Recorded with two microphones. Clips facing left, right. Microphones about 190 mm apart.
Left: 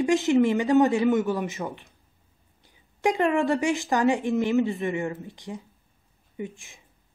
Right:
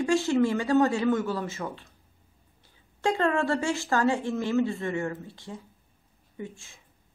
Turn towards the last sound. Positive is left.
turn(degrees=15)  # may be behind; listen again after turning